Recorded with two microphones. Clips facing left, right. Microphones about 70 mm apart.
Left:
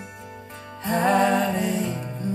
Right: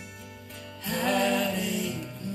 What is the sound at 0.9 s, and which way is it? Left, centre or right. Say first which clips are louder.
Music: left 6 dB; left.